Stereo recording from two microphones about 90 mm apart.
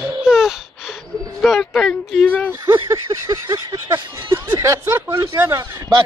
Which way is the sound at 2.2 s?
20° left (ahead or behind).